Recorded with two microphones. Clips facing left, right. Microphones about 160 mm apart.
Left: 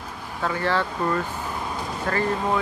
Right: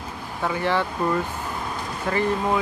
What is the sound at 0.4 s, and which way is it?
Speech, 15° right (ahead or behind).